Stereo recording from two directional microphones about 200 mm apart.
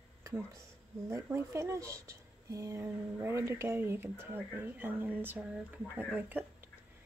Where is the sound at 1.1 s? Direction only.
15° right (ahead or behind).